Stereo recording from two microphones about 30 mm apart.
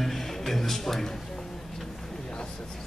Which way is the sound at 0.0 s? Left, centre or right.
Centre.